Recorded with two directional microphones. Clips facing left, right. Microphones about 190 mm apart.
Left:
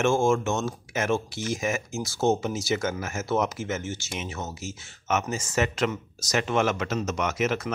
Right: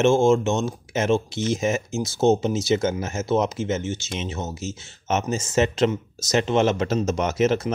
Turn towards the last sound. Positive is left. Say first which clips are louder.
# right 6 dB
turn(degrees=-30)  # may be behind; listen again after turning